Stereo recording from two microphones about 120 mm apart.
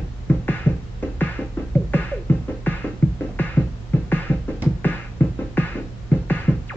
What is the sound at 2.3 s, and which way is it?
Music, 15° left (ahead or behind).